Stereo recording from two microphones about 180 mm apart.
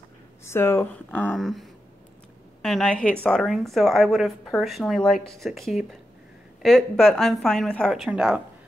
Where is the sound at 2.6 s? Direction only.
Centre (ahead or behind).